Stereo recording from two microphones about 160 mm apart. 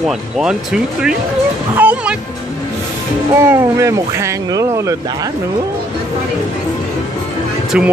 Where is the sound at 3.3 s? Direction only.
15° right (ahead or behind).